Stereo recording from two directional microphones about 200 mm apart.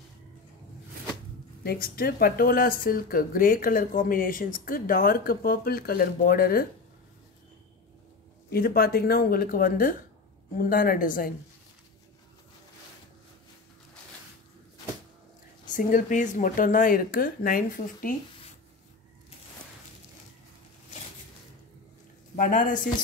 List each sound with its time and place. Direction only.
1.6 s speech: 50° left (ahead or behind)
8.5 s speech: 50° left (ahead or behind)
15.7 s speech: 40° left (ahead or behind)
22.3 s speech: 40° left (ahead or behind)